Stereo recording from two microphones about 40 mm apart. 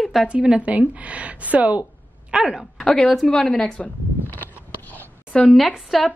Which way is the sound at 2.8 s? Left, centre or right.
Centre.